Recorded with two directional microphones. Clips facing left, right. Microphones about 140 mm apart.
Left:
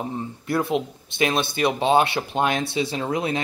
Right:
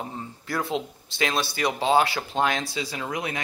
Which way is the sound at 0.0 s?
25° left (ahead or behind).